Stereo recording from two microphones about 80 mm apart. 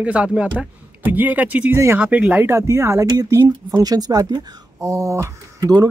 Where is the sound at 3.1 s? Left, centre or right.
Right.